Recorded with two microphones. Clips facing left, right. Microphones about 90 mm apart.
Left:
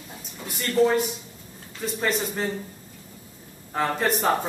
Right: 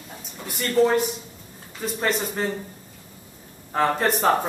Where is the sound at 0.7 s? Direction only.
5° right (ahead or behind).